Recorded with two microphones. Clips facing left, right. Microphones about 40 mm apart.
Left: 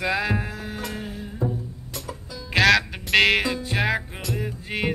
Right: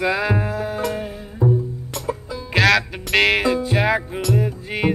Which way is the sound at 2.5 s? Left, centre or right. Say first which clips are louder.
Right 1 dB; centre.